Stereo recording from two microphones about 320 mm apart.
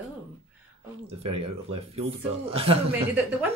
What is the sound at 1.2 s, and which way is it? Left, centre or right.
Speech, centre.